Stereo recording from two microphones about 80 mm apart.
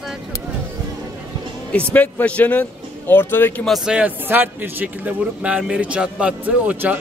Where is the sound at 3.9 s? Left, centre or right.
Centre.